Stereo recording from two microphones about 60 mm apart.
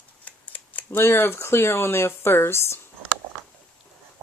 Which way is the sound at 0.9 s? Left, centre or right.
Left.